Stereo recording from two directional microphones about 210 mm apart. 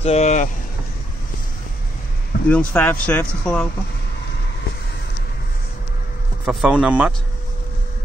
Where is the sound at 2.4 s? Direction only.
10° left (ahead or behind).